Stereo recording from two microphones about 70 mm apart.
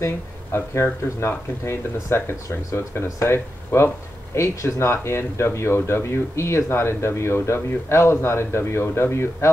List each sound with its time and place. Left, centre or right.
0.5 s speech: left
4.4 s speech: left